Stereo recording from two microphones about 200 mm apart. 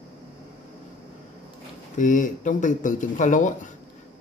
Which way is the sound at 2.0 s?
40° left (ahead or behind).